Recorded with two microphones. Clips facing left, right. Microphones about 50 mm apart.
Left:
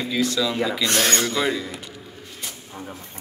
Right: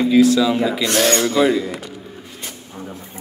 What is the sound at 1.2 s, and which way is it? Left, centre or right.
Speech, centre.